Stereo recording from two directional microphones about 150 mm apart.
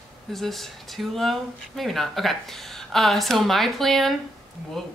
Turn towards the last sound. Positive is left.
turn(degrees=0)  # may be behind; listen again after turning